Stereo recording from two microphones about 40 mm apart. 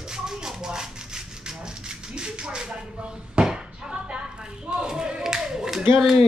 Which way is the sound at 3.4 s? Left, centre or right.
Centre.